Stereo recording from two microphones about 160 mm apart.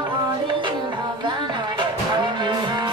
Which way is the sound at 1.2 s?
30° right (ahead or behind).